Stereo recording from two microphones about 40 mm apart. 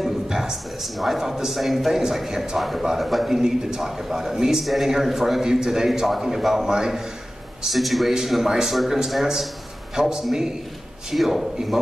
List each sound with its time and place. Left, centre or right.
0.3 s a man's voice: centre
7.6 s a man's voice: centre